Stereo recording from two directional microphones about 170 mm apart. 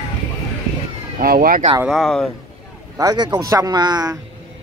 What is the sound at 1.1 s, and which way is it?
Speech, 60° right (ahead or behind).